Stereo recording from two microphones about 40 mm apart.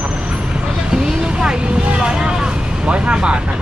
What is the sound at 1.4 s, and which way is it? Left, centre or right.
Speech, right.